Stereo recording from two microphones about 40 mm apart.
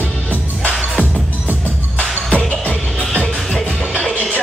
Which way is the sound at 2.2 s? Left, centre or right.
Left.